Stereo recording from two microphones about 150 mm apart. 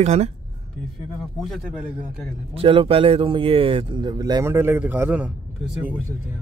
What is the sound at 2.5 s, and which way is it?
Speech, 35° right (ahead or behind).